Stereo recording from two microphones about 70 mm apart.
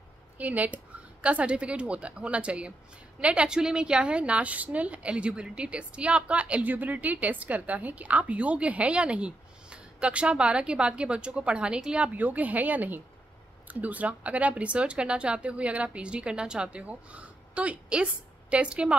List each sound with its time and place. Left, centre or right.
0.4 s a woman's voice: right